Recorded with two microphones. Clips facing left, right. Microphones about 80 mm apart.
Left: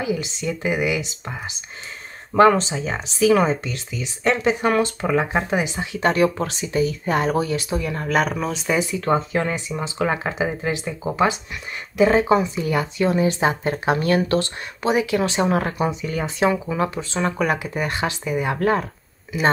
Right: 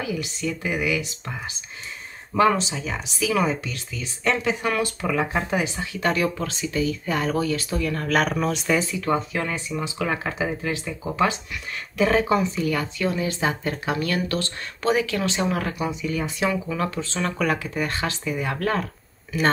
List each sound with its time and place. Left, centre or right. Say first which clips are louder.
0.0 s speech: left 3 dB; left
2.3 s speech: left 5 dB; left
3.4 s speech: left 3 dB; left
8.1 s speech: left 1 dB; centre
8.9 s speech: left 4 dB; left